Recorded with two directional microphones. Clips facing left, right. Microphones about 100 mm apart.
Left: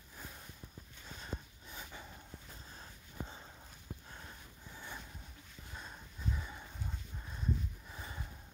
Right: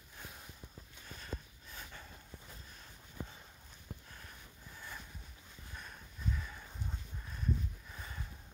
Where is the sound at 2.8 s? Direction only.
30° left (ahead or behind).